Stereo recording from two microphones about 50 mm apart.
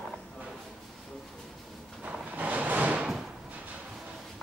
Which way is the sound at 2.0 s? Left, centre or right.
Right.